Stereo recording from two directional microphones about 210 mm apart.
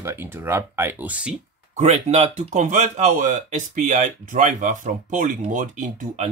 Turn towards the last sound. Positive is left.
turn(degrees=-35)  # may be behind; listen again after turning